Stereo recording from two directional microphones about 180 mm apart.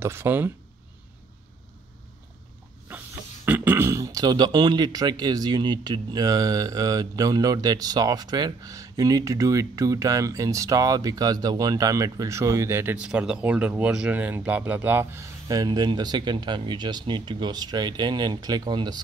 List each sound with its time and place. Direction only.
0.0 s speech: 15° right (ahead or behind)
3.4 s speech: 10° right (ahead or behind)